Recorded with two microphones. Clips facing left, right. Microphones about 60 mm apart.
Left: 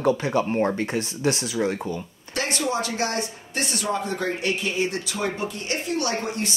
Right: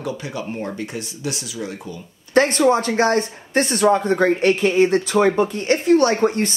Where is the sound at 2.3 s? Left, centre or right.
Right.